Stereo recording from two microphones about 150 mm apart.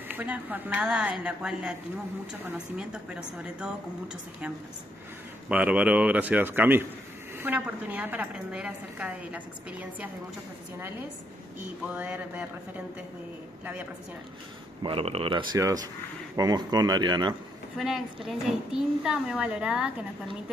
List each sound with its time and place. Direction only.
0.1 s a woman's voice: 10° right (ahead or behind)
5.5 s a woman's voice: 10° right (ahead or behind)
11.9 s a woman's voice: 10° right (ahead or behind)
14.8 s speech: 35° right (ahead or behind)
17.7 s a woman's voice: centre (ahead or behind)